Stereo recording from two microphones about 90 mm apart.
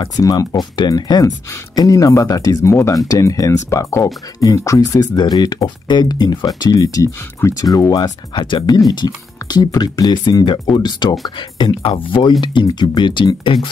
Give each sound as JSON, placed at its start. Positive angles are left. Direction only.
{"t": 0.2, "sound": "speech", "side_deg": 45}
{"t": 2.6, "sound": "speech", "side_deg": 30}
{"t": 8.0, "sound": "speech", "side_deg": 60}